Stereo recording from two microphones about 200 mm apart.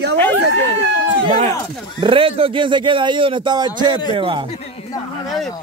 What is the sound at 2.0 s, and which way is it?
A man's voice, 25° right (ahead or behind).